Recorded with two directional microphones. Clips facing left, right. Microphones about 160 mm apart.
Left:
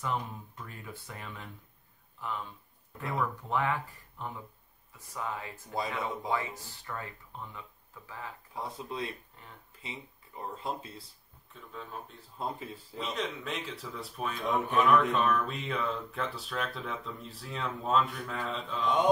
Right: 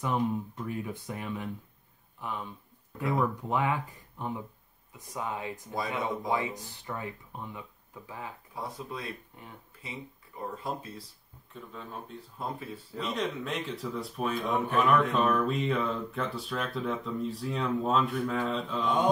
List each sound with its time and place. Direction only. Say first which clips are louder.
0.0 s speech: right 6 dB; 15° right (ahead or behind)
8.7 s speech: left 1 dB; 25° left (ahead or behind)
11.5 s speech: right 1 dB; centre (ahead or behind)
12.4 s speech: even; 20° left (ahead or behind)
13.0 s speech: right 3 dB; centre (ahead or behind)